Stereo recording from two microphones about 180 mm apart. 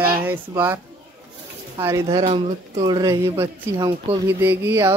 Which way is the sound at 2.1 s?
30° right (ahead or behind).